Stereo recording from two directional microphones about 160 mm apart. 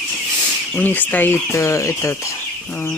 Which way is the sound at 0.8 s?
10° left (ahead or behind).